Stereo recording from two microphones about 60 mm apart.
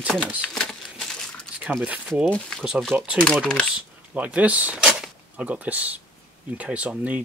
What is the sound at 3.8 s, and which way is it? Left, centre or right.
Speech, right.